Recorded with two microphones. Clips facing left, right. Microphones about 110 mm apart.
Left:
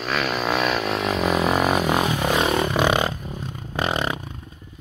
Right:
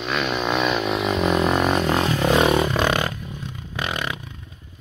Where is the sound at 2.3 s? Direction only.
10° right (ahead or behind).